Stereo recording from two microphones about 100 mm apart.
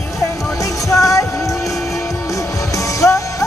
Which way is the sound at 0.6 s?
35° left (ahead or behind).